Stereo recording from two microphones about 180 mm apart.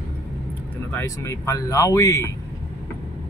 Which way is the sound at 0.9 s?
15° left (ahead or behind).